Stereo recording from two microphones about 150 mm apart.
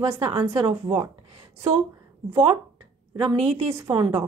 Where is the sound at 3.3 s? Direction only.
45° right (ahead or behind).